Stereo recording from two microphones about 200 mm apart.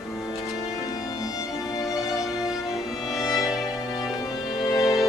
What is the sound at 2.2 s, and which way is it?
Music, centre (ahead or behind).